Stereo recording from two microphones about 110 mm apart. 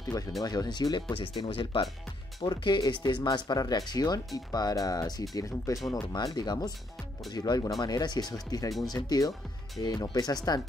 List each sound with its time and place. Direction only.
0.4 s speech: 35° left (ahead or behind)